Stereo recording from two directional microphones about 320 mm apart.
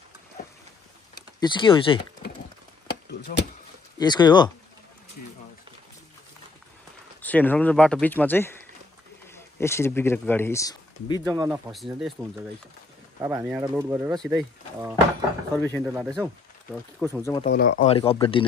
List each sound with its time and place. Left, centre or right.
1.1 s a sound: centre
3.1 s a sound: left
4.0 s speech: centre
7.2 s speech: centre
11.2 s speech: centre
15.8 s speech: centre
17.2 s speech: centre
17.5 s speech: left